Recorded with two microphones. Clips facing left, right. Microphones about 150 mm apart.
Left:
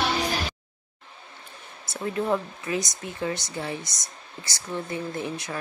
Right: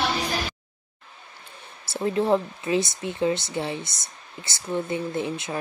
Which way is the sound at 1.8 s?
30° right (ahead or behind).